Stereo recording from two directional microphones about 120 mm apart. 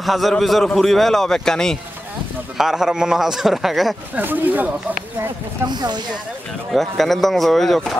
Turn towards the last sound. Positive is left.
turn(degrees=0)  # may be behind; listen again after turning